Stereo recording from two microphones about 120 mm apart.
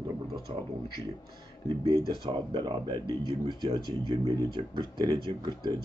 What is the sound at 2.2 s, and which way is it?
Speech, 40° right (ahead or behind).